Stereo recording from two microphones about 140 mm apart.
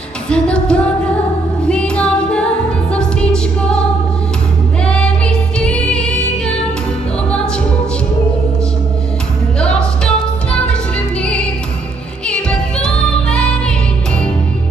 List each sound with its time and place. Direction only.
0.3 s music: 5° left (ahead or behind)
4.8 s music: 5° left (ahead or behind)
9.6 s music: 5° left (ahead or behind)
12.3 s music: 5° left (ahead or behind)